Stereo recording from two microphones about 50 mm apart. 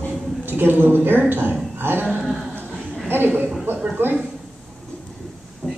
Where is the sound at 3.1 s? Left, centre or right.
Right.